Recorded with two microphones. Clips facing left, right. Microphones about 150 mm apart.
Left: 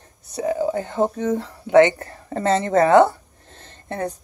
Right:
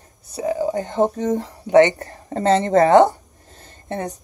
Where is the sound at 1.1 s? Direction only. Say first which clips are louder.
Right 1 dB; 40° right (ahead or behind).